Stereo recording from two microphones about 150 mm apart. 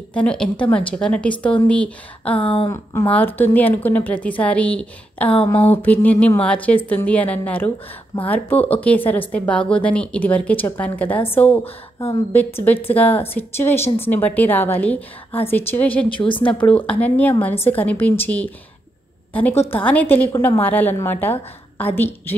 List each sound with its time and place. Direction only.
0.1 s speech: 5° left (ahead or behind)
2.3 s a woman's voice: 40° left (ahead or behind)
2.7 s speech: 20° left (ahead or behind)
5.3 s a woman's voice: 40° left (ahead or behind)
5.7 s speech: 10° left (ahead or behind)
16.1 s a woman's voice: 35° left (ahead or behind)
16.4 s speech: 10° left (ahead or behind)
19.7 s speech: 10° left (ahead or behind)